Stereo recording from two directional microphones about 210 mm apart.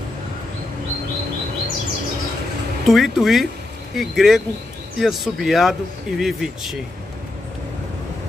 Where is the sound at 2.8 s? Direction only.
Centre (ahead or behind).